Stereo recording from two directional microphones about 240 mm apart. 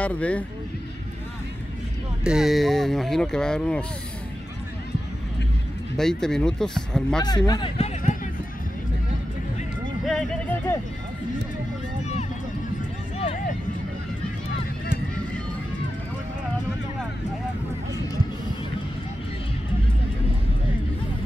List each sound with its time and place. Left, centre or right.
0.0 s speech: centre
2.2 s speech: centre
5.9 s speech: centre
7.2 s speech: centre
10.0 s speech: centre